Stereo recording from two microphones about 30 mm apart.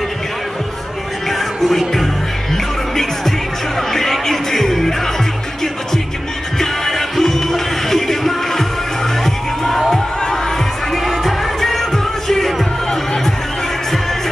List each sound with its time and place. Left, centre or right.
1.3 s music: centre
6.6 s music: centre
9.8 s crowd: left
10.9 s music: centre